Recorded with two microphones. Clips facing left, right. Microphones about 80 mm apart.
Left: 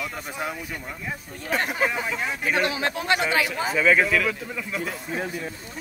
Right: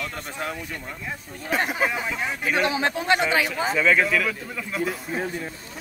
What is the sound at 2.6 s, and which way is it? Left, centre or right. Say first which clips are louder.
Speech: right 2 dB; right.